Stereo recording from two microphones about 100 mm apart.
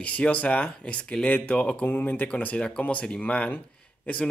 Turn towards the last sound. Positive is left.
turn(degrees=15)  # may be behind; listen again after turning